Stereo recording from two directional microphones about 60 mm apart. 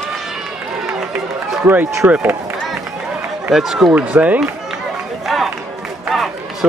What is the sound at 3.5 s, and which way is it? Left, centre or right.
Speech, centre.